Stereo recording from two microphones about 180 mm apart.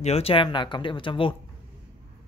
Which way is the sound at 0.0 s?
35° left (ahead or behind).